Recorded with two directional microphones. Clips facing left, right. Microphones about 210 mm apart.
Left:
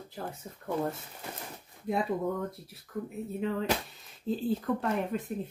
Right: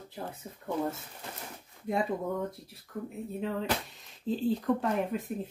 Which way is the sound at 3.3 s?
Centre (ahead or behind).